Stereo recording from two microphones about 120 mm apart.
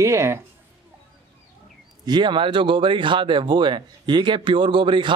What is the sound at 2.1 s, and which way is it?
Speech, 40° right (ahead or behind).